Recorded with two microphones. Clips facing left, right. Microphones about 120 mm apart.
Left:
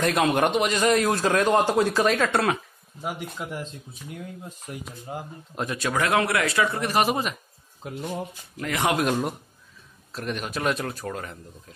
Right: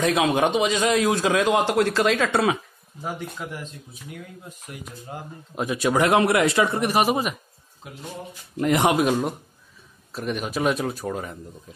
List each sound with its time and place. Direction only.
0.0 s a man's voice: centre (ahead or behind)
3.0 s speech: 10° left (ahead or behind)
4.7 s speech: 30° left (ahead or behind)
5.1 s speech: 10° left (ahead or behind)
5.6 s a man's voice: 10° right (ahead or behind)
8.5 s speech: 25° right (ahead or behind)
8.9 s a man's voice: 5° right (ahead or behind)